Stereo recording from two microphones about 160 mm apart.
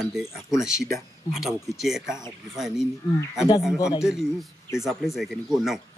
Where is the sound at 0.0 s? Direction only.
5° right (ahead or behind).